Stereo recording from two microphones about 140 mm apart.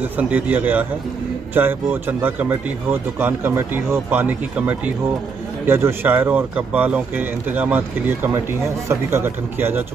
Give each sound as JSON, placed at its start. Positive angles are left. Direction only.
{"t": 0.0, "sound": "speech", "side_deg": -10}